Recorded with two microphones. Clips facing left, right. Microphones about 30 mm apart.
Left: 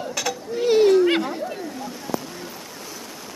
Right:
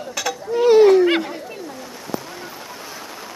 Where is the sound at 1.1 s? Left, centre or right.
Centre.